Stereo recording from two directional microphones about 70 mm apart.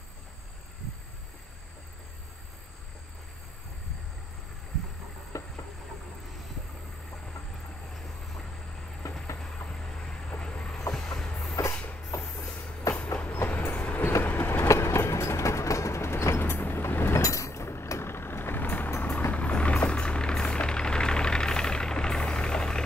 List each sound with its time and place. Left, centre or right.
5.3 s a sound: left
9.0 s train: left
9.7 s vehicle: centre
10.9 s train: centre
11.7 s train: left
12.9 s train: left
13.2 s train: left
14.7 s train: left
17.2 s vehicle: left; by 22.8 s centre